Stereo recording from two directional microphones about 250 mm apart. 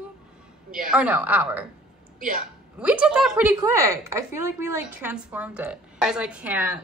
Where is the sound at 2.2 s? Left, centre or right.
Right.